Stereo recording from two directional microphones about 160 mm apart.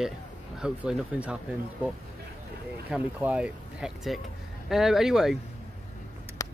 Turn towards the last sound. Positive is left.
turn(degrees=20)  # may be behind; listen again after turning